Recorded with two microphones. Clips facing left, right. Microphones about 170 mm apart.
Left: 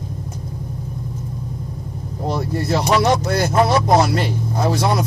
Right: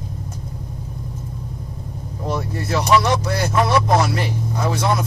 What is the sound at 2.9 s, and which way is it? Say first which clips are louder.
Speech: even; 40° left (ahead or behind).